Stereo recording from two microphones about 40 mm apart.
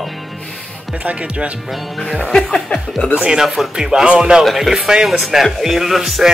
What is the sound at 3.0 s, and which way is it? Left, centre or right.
Speech, left.